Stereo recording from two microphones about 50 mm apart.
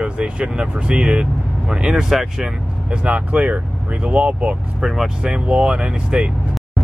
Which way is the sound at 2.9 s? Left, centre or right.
Right.